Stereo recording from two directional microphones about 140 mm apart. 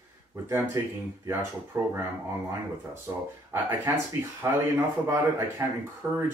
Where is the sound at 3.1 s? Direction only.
20° right (ahead or behind).